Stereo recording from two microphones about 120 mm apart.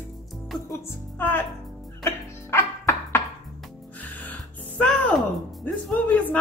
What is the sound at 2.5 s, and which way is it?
Music, 20° left (ahead or behind).